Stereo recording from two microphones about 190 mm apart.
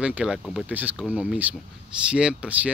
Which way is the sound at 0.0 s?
5° right (ahead or behind).